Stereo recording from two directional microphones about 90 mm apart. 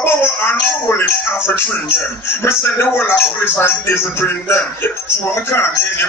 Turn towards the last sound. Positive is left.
turn(degrees=25)  # may be behind; listen again after turning